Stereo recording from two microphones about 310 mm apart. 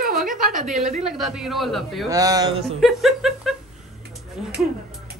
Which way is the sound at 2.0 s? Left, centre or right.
Centre.